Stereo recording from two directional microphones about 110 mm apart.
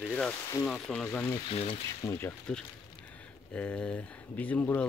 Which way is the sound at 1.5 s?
60° left (ahead or behind).